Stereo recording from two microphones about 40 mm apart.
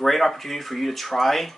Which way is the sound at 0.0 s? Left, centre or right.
Centre.